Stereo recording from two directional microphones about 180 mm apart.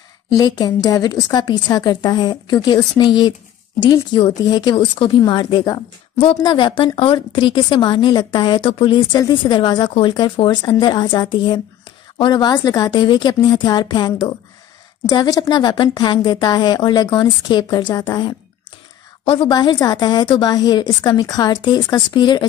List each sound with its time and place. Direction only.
0.3 s a woman's voice: 20° left (ahead or behind)